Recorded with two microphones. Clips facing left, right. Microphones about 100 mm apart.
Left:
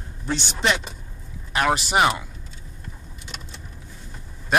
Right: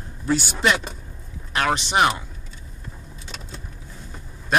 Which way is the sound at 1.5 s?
5° left (ahead or behind).